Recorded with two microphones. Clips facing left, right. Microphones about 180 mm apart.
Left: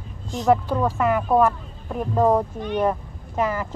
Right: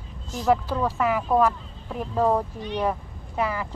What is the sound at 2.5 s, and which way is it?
Speech, 50° left (ahead or behind).